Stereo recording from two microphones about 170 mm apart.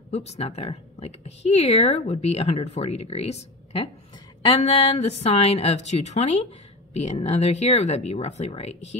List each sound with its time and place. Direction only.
0.1 s speech: 40° left (ahead or behind)